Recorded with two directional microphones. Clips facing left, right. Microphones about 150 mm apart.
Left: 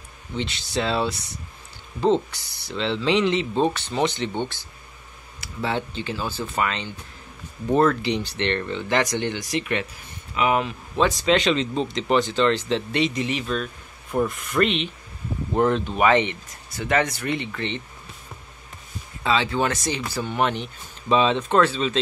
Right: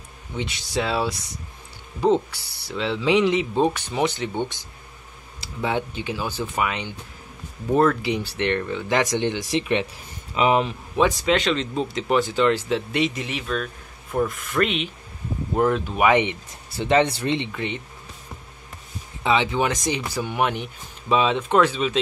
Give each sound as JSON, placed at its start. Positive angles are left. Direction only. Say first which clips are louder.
{"t": 0.4, "sound": "speech", "louder": "even", "side_deg": -10}
{"t": 5.6, "sound": "speech", "louder": "right 1 dB", "side_deg": -15}
{"t": 11.3, "sound": "speech", "louder": "left 1 dB", "side_deg": 0}
{"t": 16.7, "sound": "speech", "louder": "right 4 dB", "side_deg": -30}
{"t": 17.5, "sound": "speech", "louder": "even", "side_deg": -10}
{"t": 19.2, "sound": "speech", "louder": "right 1 dB", "side_deg": -20}